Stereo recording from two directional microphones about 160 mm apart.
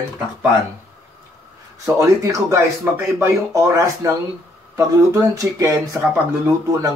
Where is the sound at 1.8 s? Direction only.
20° right (ahead or behind).